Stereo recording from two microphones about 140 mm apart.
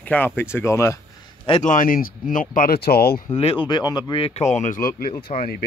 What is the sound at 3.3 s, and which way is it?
Speech, 45° left (ahead or behind).